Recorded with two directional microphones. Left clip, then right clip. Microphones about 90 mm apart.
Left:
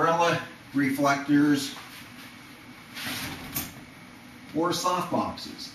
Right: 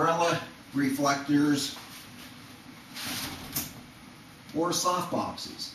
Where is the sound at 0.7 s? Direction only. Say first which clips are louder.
Left 3 dB; 10° right (ahead or behind).